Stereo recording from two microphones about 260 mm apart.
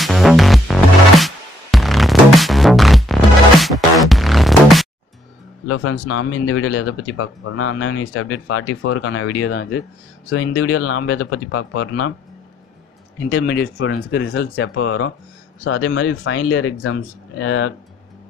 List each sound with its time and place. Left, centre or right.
0.0 s music: centre
5.7 s speech: left
13.3 s speech: left